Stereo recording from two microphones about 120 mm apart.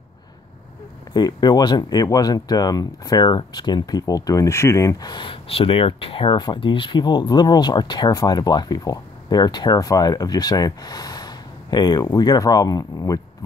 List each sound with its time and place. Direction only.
1.1 s speech: 35° left (ahead or behind)